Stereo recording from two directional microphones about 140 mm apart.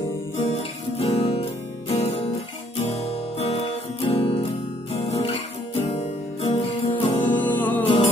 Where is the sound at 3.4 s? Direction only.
50° left (ahead or behind).